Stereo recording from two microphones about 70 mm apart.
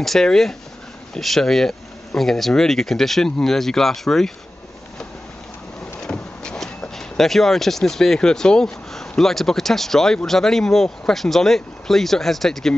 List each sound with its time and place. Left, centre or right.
0.0 s speech: centre
5.9 s speech: centre